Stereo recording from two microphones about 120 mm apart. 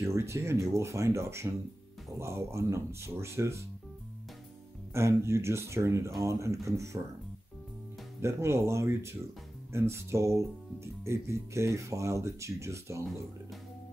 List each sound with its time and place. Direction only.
0.0 s speech: 25° right (ahead or behind)
4.9 s speech: 25° right (ahead or behind)
8.2 s speech: 25° right (ahead or behind)